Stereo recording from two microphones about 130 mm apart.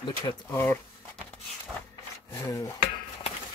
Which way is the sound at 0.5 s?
20° left (ahead or behind).